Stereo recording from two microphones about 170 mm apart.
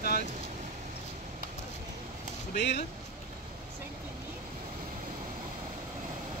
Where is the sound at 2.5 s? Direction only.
80° left.